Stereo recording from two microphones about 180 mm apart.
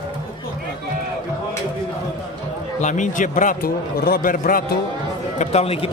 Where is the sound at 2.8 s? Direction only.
45° left (ahead or behind).